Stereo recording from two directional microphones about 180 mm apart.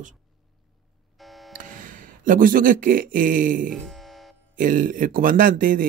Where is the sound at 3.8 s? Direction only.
Centre (ahead or behind).